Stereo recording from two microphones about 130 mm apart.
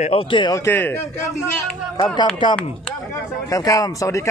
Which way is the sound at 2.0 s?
35° left (ahead or behind).